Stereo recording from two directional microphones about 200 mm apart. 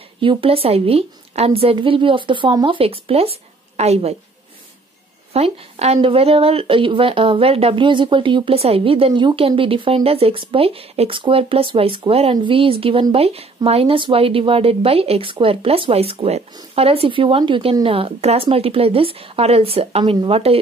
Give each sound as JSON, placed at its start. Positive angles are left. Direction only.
{"t": 0.2, "sound": "speech", "side_deg": -25}
{"t": 5.3, "sound": "speech", "side_deg": -30}